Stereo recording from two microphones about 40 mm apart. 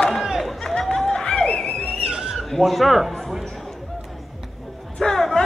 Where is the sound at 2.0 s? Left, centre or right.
Right.